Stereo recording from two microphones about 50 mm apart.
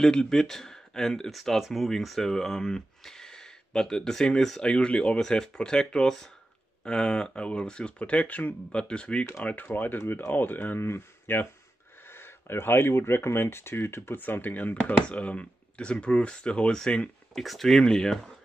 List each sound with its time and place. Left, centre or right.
0.0 s speech: centre
8.0 s speech: left
9.4 s speech: left
14.2 s speech: left; by 17.1 s centre
17.3 s speech: centre